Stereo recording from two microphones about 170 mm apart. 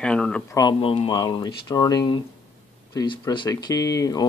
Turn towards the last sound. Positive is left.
turn(degrees=20)  # may be behind; listen again after turning